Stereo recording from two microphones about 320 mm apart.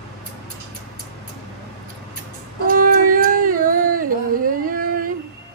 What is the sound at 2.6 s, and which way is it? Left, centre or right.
Music, right.